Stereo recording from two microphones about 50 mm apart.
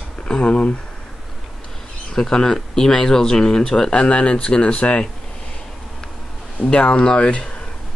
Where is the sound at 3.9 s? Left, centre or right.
Left.